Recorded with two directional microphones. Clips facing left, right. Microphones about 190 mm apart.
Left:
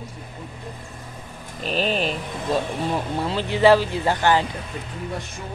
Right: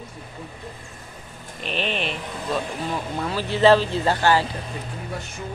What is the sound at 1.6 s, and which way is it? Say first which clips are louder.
Speech: left 4 dB; 40° left (ahead or behind).